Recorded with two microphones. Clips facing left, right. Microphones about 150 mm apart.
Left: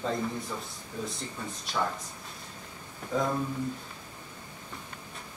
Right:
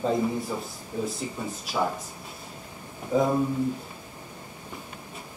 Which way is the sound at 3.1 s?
20° right (ahead or behind).